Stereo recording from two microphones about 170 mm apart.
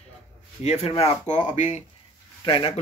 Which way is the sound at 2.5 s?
30° left (ahead or behind).